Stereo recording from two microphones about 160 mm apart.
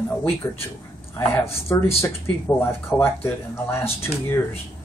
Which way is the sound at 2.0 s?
15° left (ahead or behind).